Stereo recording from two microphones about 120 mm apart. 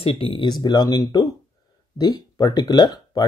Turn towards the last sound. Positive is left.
turn(degrees=35)  # may be behind; listen again after turning